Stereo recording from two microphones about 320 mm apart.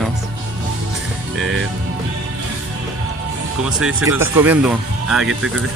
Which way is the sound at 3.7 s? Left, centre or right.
Centre.